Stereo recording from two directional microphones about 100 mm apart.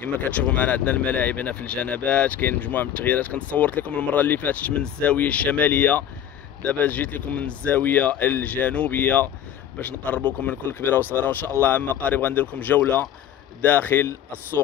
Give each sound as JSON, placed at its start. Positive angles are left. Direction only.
{"t": 0.0, "sound": "speech", "side_deg": 15}